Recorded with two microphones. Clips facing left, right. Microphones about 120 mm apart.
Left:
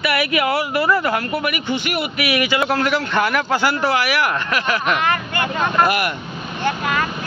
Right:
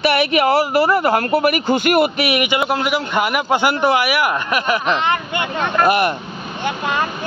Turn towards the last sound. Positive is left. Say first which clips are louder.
# even
turn(degrees=-25)  # may be behind; listen again after turning